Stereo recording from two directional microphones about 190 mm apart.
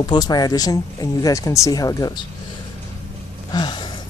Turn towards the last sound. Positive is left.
turn(degrees=25)  # may be behind; listen again after turning